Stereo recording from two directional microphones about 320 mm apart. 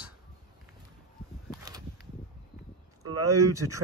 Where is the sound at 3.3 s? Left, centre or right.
Centre.